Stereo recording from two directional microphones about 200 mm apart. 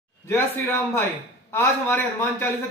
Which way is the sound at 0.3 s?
10° left (ahead or behind).